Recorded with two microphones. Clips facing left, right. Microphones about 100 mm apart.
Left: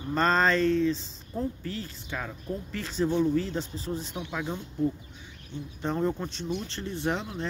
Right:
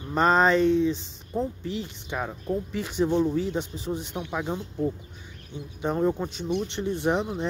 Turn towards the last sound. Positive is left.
turn(degrees=-15)  # may be behind; listen again after turning